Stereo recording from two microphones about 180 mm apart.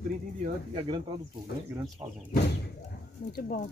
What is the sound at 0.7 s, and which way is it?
Speech, 30° right (ahead or behind).